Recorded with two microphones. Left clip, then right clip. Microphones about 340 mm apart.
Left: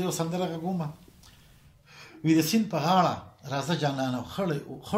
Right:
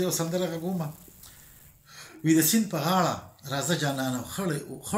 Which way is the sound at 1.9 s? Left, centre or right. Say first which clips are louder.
Right 1 dB; centre.